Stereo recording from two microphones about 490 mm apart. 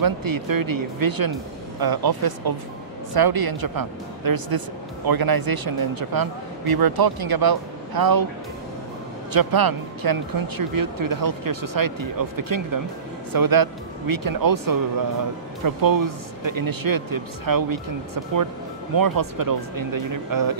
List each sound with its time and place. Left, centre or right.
0.0 s speech: right
9.3 s speech: right